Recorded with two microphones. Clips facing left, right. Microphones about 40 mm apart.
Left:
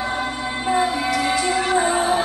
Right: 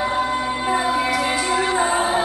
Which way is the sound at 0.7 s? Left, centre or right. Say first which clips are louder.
Left 1 dB; centre.